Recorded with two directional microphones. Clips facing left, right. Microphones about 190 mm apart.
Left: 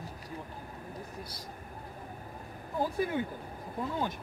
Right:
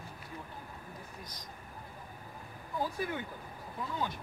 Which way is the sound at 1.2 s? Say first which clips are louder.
Left 5 dB; 10° left (ahead or behind).